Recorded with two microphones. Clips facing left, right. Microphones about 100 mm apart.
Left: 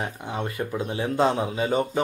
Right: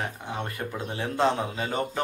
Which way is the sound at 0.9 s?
10° left (ahead or behind).